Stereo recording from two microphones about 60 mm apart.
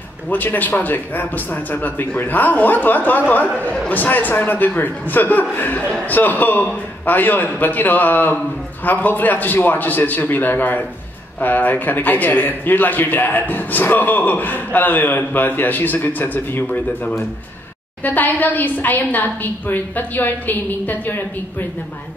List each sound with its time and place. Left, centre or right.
0.3 s a man's voice: left